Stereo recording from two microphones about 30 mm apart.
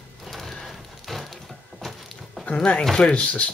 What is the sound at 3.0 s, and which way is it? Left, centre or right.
Speech, left.